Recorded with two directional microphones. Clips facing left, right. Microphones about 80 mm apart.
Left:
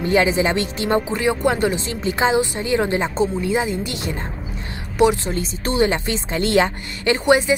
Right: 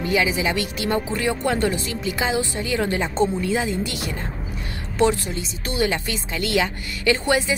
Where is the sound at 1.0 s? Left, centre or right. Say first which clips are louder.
Left 4 dB; left.